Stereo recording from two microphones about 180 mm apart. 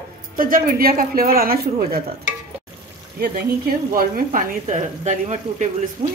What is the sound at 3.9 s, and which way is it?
A woman's voice, 50° right (ahead or behind).